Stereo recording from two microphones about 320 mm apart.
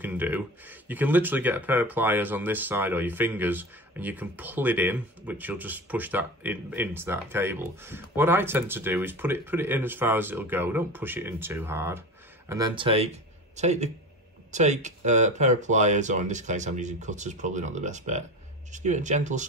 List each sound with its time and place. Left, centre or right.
0.0 s speech: centre; by 19.4 s right